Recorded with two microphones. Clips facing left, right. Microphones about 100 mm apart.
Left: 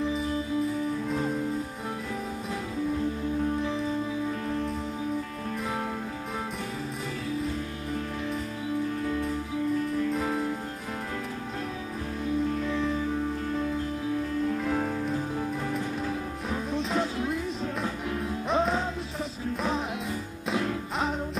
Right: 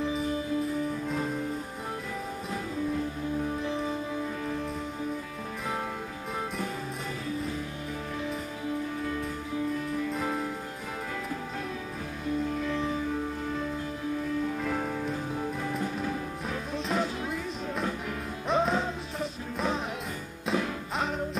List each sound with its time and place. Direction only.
14.6 s music: centre (ahead or behind)
16.4 s music: centre (ahead or behind)
18.5 s music: centre (ahead or behind)